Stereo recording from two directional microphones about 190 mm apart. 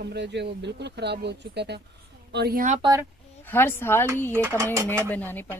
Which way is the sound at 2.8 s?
20° right (ahead or behind).